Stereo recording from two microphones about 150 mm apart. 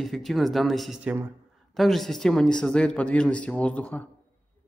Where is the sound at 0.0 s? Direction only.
Centre (ahead or behind).